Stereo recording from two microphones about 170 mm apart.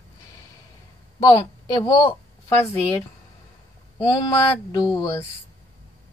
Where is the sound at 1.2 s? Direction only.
20° left (ahead or behind).